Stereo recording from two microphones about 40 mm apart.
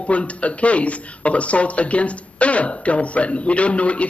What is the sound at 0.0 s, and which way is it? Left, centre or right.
Speech, left.